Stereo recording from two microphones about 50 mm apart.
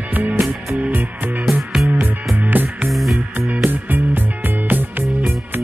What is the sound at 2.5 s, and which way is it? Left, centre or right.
Music, right.